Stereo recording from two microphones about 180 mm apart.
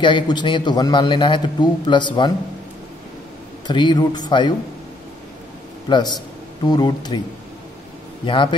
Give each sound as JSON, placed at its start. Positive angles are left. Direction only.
{"t": 0.0, "sound": "a man's voice", "side_deg": 25}
{"t": 3.6, "sound": "a man's voice", "side_deg": 25}
{"t": 5.9, "sound": "a man's voice", "side_deg": 25}
{"t": 8.3, "sound": "a man's voice", "side_deg": 25}